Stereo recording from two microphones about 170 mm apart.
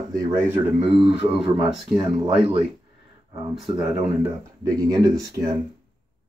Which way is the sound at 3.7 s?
20° right (ahead or behind).